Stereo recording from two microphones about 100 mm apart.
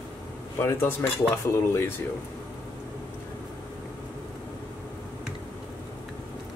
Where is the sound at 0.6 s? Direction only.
25° left (ahead or behind).